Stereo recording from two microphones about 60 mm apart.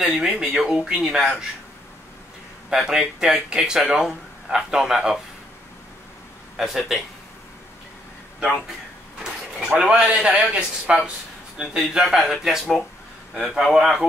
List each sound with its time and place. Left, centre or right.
0.0 s speech: centre
2.7 s speech: centre
6.5 s speech: centre
9.2 s a man's voice: centre